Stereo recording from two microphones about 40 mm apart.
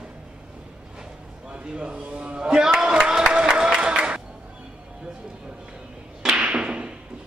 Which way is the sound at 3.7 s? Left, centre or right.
Right.